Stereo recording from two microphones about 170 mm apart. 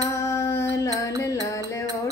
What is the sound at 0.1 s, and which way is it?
Music, 20° left (ahead or behind).